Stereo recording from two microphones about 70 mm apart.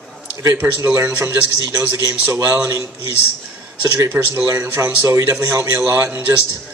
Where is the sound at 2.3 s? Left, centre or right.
Right.